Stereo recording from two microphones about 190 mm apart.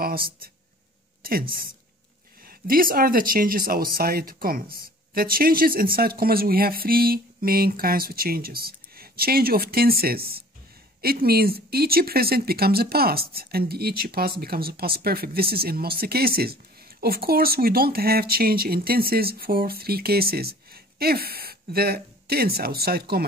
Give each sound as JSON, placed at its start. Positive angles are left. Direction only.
{"t": 0.0, "sound": "speech", "side_deg": -50}
{"t": 2.4, "sound": "speech", "side_deg": -50}